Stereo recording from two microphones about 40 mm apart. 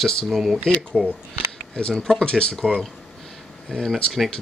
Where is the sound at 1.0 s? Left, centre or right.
Right.